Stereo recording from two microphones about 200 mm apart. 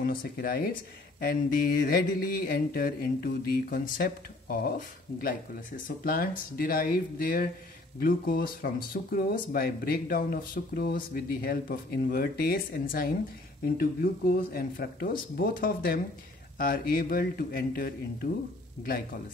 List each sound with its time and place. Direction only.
0.0 s speech: 45° left (ahead or behind)